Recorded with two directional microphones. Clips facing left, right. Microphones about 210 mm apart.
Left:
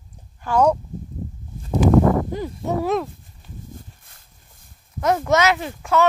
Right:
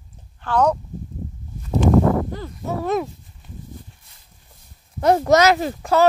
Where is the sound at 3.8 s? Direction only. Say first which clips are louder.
Even; 50° left (ahead or behind).